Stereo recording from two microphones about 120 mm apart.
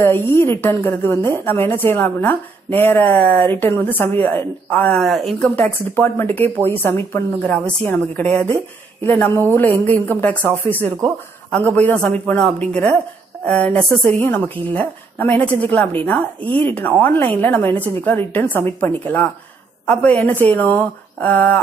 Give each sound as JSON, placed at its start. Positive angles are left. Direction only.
{"t": 0.0, "sound": "a woman's voice", "side_deg": 20}
{"t": 5.0, "sound": "speech", "side_deg": 0}
{"t": 5.6, "sound": "a woman's voice", "side_deg": 15}
{"t": 11.5, "sound": "a woman's voice", "side_deg": 10}